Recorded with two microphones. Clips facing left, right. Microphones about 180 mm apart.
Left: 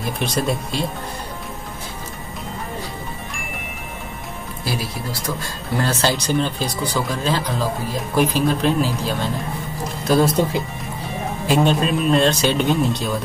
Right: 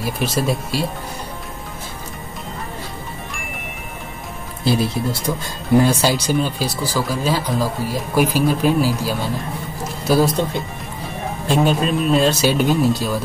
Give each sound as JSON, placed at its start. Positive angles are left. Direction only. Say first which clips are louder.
{"t": 0.0, "sound": "speech", "louder": "right 1 dB", "side_deg": -5}
{"t": 4.6, "sound": "speech", "louder": "right 8 dB", "side_deg": -25}
{"t": 5.4, "sound": "speech", "louder": "right 11 dB", "side_deg": -10}
{"t": 11.4, "sound": "speech", "louder": "even", "side_deg": 0}